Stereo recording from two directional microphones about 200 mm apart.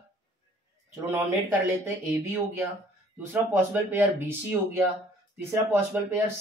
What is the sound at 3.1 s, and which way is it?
Speech, 10° right (ahead or behind).